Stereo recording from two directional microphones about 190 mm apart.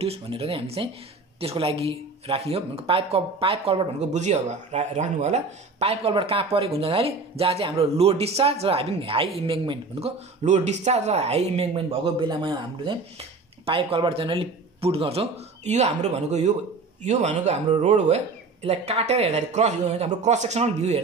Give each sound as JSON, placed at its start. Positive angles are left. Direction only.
{"t": 0.0, "sound": "a man's voice", "side_deg": -30}